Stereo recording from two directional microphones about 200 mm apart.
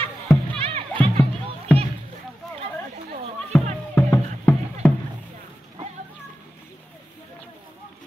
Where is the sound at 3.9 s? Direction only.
10° left (ahead or behind).